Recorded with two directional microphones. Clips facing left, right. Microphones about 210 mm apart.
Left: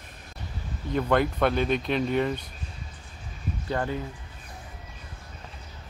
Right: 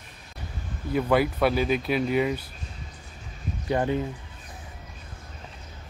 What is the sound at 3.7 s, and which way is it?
Speech, 20° right (ahead or behind).